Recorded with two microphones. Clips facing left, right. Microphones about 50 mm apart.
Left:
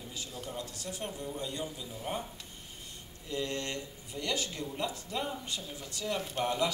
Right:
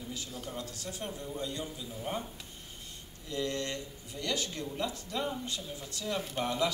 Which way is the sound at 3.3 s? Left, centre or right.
Left.